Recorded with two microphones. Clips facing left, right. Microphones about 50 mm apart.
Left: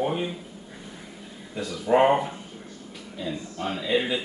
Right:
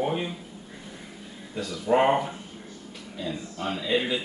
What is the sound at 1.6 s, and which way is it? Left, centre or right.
Speech, centre.